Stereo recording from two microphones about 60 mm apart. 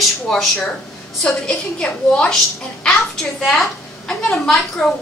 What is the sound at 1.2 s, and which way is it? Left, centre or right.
A woman's voice, centre.